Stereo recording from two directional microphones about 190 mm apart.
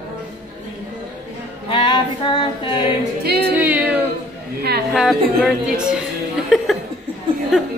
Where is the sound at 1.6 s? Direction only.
25° left (ahead or behind).